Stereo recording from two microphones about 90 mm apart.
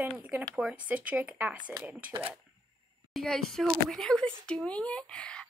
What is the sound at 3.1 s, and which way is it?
Speech, 5° left (ahead or behind).